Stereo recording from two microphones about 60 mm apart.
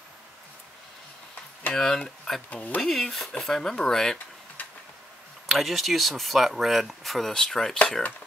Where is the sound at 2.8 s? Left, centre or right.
Centre.